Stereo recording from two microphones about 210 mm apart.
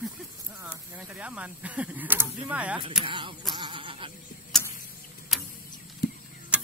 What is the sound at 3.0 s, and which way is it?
Speech, 25° right (ahead or behind).